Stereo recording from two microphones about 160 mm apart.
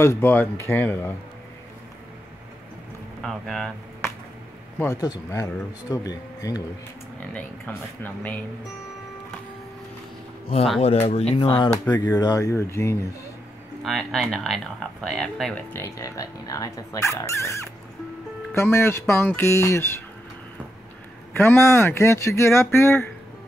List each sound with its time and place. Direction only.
0.0 s speech: 15° left (ahead or behind)
3.2 s speech: centre (ahead or behind)
4.7 s speech: 20° left (ahead or behind)
7.2 s speech: 10° left (ahead or behind)
10.8 s speech: 40° left (ahead or behind); by 13.1 s 20° left (ahead or behind)
13.8 s speech: centre (ahead or behind)
15.7 s speech: 20° left (ahead or behind)
21.3 s speech: 15° left (ahead or behind)